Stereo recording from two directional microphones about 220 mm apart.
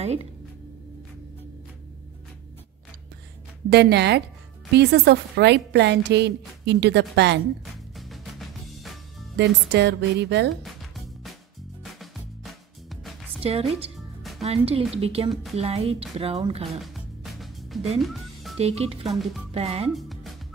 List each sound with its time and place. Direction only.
0.0 s a woman's voice: 30° right (ahead or behind)
3.7 s a woman's voice: 50° right (ahead or behind)
7.9 s music: centre (ahead or behind)
9.7 s a woman's voice: 50° right (ahead or behind)
10.5 s music: centre (ahead or behind)
13.4 s speech: 25° right (ahead or behind)
13.9 s music: centre (ahead or behind)
14.4 s a woman's voice: 25° right (ahead or behind)
16.6 s music: centre (ahead or behind)
18.6 s a woman's voice: 25° right (ahead or behind)
19.0 s speech: centre (ahead or behind)
19.5 s a woman's voice: 25° right (ahead or behind)
19.9 s music: centre (ahead or behind)